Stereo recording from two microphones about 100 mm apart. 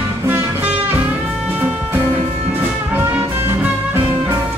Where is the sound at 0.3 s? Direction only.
20° right (ahead or behind).